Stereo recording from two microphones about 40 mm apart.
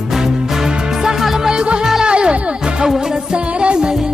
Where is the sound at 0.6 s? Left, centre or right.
Centre.